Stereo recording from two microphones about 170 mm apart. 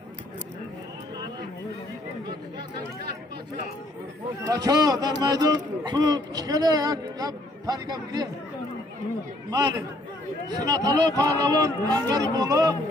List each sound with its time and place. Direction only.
4.5 s a man's voice: 20° right (ahead or behind)
9.5 s a man's voice: 25° right (ahead or behind)